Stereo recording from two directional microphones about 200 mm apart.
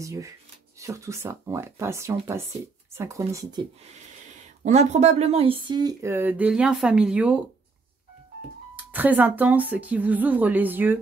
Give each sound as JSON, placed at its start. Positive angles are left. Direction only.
{"t": 0.0, "sound": "speech", "side_deg": -15}
{"t": 4.6, "sound": "speech", "side_deg": -35}
{"t": 8.9, "sound": "speech", "side_deg": -10}